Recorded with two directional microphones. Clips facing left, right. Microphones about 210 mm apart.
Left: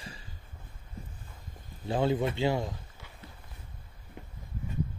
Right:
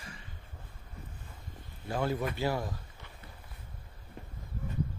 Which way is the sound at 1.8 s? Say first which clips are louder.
Left 4 dB; 25° left (ahead or behind).